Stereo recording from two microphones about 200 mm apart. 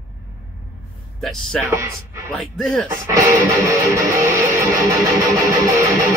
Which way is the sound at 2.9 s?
15° right (ahead or behind).